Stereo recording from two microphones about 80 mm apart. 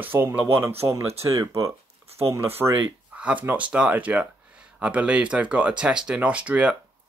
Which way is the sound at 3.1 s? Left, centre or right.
Centre.